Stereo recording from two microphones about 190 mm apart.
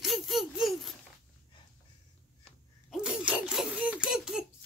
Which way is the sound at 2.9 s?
5° right (ahead or behind).